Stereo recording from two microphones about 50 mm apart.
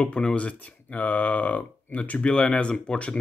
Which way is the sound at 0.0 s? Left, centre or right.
Centre.